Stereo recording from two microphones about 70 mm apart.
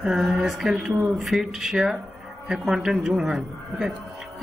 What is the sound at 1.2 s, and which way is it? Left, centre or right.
Speech, centre.